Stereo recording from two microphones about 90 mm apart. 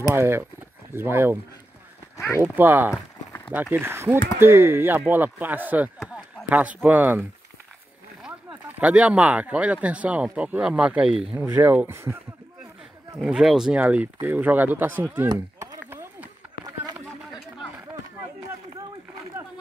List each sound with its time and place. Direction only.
0.1 s speech: 25° right (ahead or behind)
2.1 s speech: 35° left (ahead or behind)
2.4 s speech: 20° right (ahead or behind)
8.3 s speech: 20° right (ahead or behind)
11.4 s speech: 20° right (ahead or behind)
13.2 s speech: 5° right (ahead or behind)
15.2 s chop: 35° right (ahead or behind)